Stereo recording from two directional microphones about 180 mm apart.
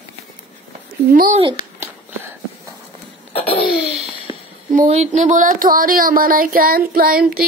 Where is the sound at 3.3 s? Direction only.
30° left (ahead or behind).